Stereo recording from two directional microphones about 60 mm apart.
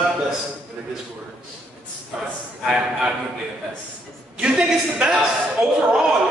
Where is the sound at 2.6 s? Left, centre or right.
Centre.